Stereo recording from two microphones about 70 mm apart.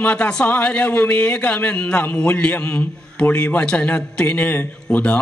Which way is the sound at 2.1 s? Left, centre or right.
Centre.